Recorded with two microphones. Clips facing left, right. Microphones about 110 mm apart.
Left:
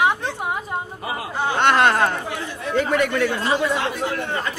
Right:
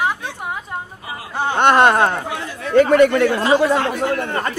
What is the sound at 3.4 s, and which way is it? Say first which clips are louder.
Speech: right 6 dB; 90° right.